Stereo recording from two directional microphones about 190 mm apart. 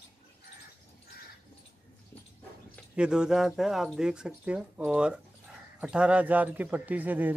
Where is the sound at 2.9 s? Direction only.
5° right (ahead or behind).